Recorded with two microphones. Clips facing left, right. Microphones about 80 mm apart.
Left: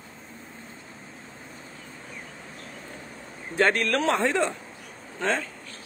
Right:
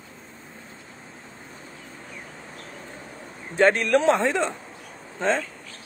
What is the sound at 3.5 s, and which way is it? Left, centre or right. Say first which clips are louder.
A man's voice: right 4 dB; centre.